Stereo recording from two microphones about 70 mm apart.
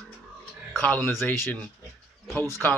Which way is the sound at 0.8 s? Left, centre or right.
Left.